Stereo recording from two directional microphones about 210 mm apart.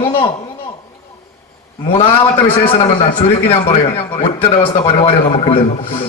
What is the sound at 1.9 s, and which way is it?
A man's voice, 25° left (ahead or behind).